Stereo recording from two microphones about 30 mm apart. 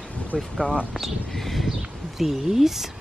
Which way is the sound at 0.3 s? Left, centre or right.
Left.